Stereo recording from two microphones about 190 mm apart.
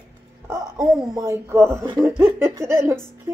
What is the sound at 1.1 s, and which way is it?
Speech, 15° right (ahead or behind).